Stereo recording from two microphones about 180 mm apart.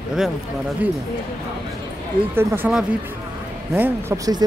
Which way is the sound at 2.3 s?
10° right (ahead or behind).